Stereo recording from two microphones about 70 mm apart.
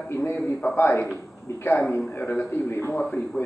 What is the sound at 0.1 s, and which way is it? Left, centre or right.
A man's voice, left.